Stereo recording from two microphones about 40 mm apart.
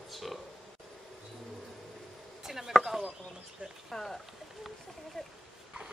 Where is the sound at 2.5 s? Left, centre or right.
Centre.